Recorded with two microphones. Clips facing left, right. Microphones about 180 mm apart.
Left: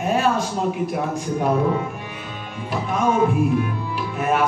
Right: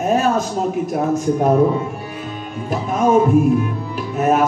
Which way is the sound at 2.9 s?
40° right (ahead or behind).